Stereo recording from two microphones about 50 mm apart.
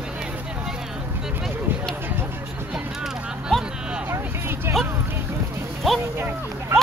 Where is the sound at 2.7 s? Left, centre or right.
Centre.